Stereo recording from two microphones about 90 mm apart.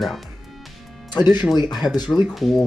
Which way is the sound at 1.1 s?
55° left (ahead or behind).